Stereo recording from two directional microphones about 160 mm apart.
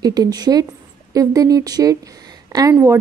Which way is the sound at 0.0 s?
25° right (ahead or behind).